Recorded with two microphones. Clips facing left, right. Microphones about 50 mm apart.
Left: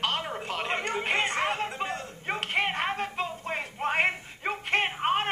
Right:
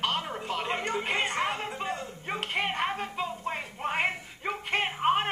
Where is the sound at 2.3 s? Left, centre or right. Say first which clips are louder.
Left 2 dB; centre.